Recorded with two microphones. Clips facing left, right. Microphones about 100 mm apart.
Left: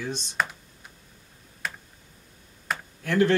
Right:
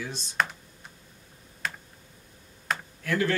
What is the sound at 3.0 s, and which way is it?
Speech, 20° left (ahead or behind).